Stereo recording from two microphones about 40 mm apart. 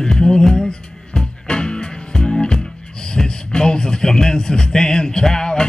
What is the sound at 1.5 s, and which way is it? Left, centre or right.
Music, left.